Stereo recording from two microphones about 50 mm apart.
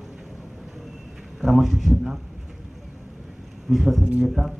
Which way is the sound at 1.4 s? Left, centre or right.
Centre.